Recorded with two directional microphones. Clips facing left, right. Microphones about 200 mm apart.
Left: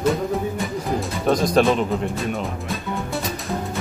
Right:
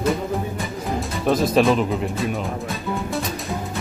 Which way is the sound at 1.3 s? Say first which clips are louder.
Even; 5° right (ahead or behind).